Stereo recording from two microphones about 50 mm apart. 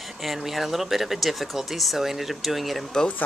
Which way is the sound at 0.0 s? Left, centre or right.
Centre.